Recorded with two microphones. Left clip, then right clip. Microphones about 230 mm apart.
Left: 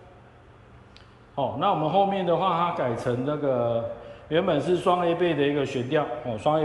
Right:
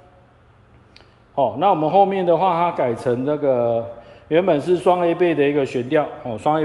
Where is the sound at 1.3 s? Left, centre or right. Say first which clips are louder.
Right 7 dB; centre.